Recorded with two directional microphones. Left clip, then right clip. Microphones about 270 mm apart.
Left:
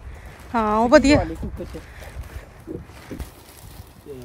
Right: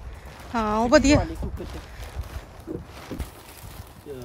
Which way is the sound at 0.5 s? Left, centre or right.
Centre.